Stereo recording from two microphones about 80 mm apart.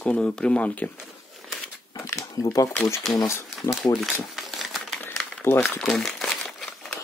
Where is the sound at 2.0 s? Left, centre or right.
Left.